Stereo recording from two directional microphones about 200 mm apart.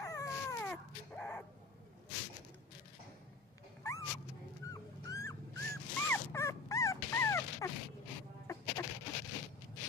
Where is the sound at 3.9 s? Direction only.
15° left (ahead or behind).